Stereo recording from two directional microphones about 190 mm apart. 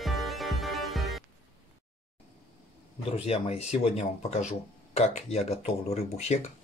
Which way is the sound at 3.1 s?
30° left (ahead or behind).